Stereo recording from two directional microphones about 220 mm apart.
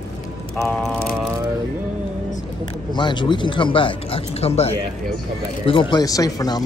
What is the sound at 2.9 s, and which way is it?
Speech, 20° left (ahead or behind).